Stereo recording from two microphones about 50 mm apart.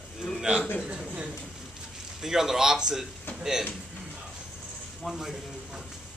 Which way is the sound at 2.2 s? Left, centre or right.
Centre.